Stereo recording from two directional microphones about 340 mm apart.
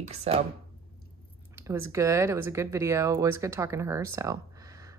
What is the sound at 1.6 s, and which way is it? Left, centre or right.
Speech, centre.